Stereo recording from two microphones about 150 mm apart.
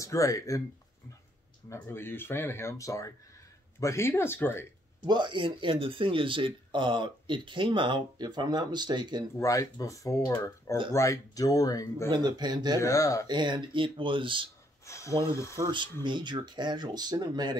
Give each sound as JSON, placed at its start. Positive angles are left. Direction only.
{"t": 0.0, "sound": "speech", "side_deg": 20}
{"t": 1.7, "sound": "speech", "side_deg": 15}
{"t": 5.0, "sound": "speech", "side_deg": -30}
{"t": 9.4, "sound": "speech", "side_deg": 20}
{"t": 12.1, "sound": "speech", "side_deg": -30}
{"t": 12.8, "sound": "speech", "side_deg": 20}
{"t": 13.3, "sound": "speech", "side_deg": -30}
{"t": 14.9, "sound": "speech", "side_deg": 20}
{"t": 15.5, "sound": "speech", "side_deg": -30}